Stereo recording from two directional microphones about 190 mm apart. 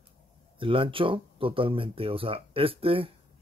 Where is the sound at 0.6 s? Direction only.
25° right (ahead or behind).